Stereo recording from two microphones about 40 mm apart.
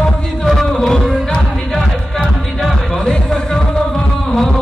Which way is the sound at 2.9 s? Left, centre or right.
Left.